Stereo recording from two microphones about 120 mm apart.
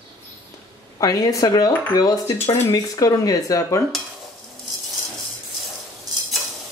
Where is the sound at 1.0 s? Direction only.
30° left (ahead or behind).